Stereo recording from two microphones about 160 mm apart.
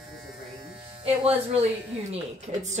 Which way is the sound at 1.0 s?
40° right (ahead or behind).